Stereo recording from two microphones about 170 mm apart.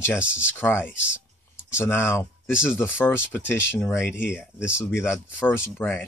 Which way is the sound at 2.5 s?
5° right (ahead or behind).